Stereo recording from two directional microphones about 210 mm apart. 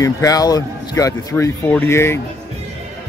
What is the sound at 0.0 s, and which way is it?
Speech, 15° left (ahead or behind).